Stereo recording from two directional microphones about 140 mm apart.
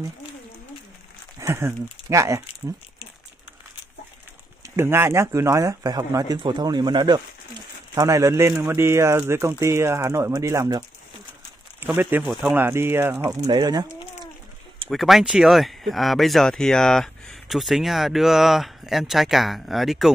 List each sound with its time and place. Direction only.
1.4 s speech: 20° right (ahead or behind)
4.6 s speech: 15° right (ahead or behind)
11.8 s speech: 15° right (ahead or behind)
12.3 s speech: centre (ahead or behind)
12.5 s speech: 15° right (ahead or behind)
14.9 s speech: centre (ahead or behind)